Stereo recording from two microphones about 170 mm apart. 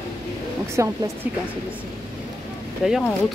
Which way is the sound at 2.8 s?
5° right (ahead or behind).